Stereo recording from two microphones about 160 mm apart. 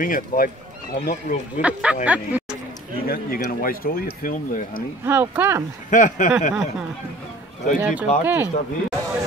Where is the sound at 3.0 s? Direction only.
65° left (ahead or behind).